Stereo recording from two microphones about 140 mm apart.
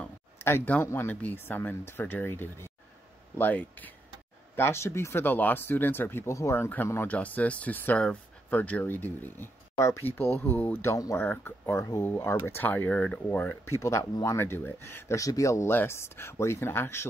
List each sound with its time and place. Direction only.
0.0 s speech: 15° left (ahead or behind)